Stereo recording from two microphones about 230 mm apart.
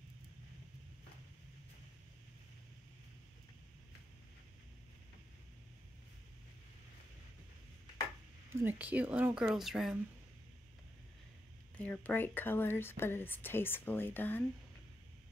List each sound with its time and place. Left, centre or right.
8.5 s speech: centre
11.7 s speech: centre